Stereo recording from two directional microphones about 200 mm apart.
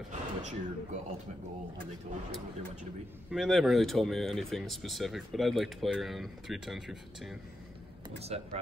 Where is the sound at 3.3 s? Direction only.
Centre (ahead or behind).